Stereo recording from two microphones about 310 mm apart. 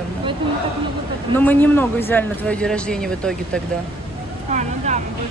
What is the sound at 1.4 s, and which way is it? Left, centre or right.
Speech, centre.